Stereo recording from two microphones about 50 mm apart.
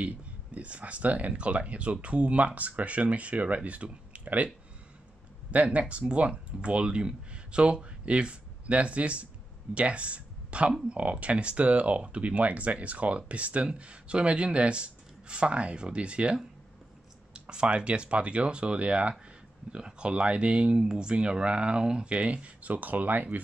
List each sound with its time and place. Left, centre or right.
0.0 s speech: right
5.5 s speech: right